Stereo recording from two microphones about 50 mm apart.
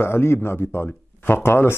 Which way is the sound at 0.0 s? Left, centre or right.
Left.